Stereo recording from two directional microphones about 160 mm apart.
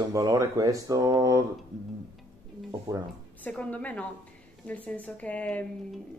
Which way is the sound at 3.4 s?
10° left (ahead or behind).